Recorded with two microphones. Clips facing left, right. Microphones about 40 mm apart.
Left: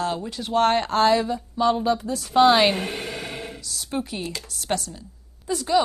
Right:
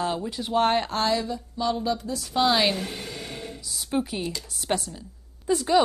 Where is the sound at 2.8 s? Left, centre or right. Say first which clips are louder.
Left 4 dB; left.